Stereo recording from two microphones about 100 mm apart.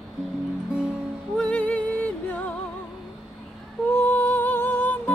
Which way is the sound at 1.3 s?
10° left (ahead or behind).